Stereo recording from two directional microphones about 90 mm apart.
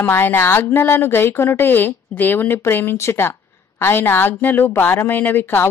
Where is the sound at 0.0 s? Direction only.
25° left (ahead or behind).